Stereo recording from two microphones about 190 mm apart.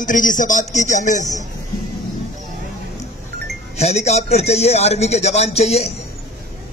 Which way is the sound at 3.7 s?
35° left (ahead or behind).